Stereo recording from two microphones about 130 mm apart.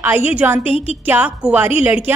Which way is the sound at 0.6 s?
50° left (ahead or behind).